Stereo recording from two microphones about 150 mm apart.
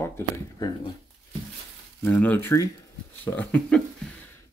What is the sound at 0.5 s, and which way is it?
Speech, 25° left (ahead or behind).